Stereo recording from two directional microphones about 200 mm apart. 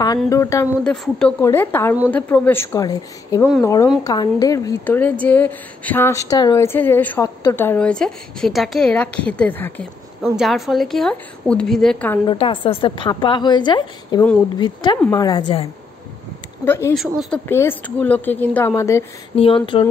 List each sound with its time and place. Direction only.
0.3 s a woman's voice: 15° left (ahead or behind)
0.8 s a woman's voice: 5° left (ahead or behind)
12.3 s a woman's voice: 25° left (ahead or behind)
16.6 s a woman's voice: 10° left (ahead or behind)
16.9 s a woman's voice: centre (ahead or behind)
17.5 s a woman's voice: 10° left (ahead or behind)
19.3 s a woman's voice: 25° left (ahead or behind)